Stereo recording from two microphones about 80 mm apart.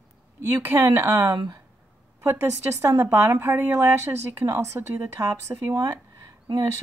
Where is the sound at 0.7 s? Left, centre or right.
Right.